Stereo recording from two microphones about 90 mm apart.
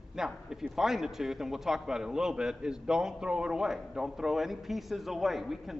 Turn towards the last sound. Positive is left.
turn(degrees=0)  # may be behind; listen again after turning